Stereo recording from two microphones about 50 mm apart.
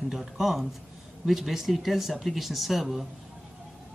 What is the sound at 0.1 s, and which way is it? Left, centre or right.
Speech, centre.